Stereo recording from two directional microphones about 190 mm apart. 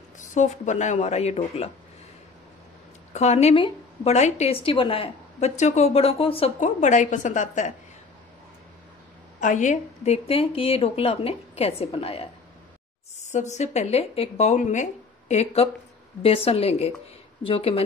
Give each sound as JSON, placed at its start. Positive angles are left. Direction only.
{"t": 0.2, "sound": "a woman's voice", "side_deg": 40}
{"t": 3.1, "sound": "a woman's voice", "side_deg": 35}
{"t": 9.4, "sound": "a woman's voice", "side_deg": 40}
{"t": 13.3, "sound": "a woman's voice", "side_deg": 40}